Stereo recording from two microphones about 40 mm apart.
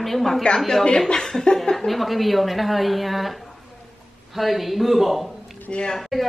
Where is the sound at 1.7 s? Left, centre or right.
Centre.